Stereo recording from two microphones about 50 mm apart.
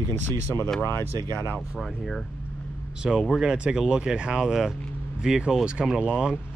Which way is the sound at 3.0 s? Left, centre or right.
Centre.